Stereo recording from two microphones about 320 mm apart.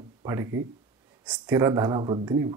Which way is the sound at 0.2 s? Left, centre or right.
Centre.